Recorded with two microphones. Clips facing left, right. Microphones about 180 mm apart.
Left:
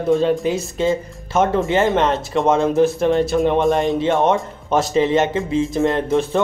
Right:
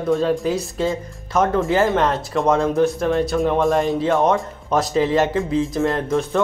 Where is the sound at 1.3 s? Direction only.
25° left (ahead or behind).